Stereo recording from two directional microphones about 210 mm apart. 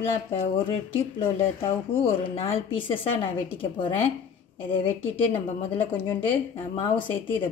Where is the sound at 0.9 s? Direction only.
25° left (ahead or behind).